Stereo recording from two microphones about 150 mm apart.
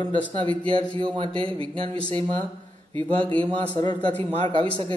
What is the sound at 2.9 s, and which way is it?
Speech, 10° left (ahead or behind).